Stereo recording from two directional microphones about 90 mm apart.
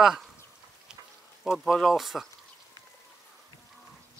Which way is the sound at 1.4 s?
Centre (ahead or behind).